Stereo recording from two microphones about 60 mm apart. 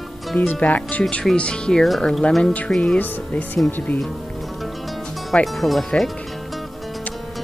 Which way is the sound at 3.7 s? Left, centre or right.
Left.